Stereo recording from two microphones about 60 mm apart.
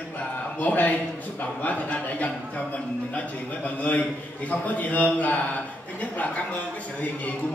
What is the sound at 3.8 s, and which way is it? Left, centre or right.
A man's voice, left.